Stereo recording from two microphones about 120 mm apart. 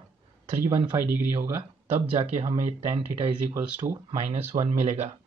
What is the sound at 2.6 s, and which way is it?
Speech, 80° right.